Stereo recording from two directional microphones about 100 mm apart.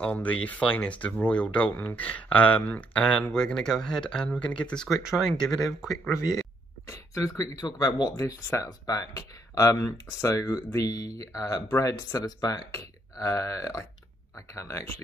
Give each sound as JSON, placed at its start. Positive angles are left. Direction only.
{"t": 0.0, "sound": "speech", "side_deg": 10}
{"t": 6.1, "sound": "speech", "side_deg": 35}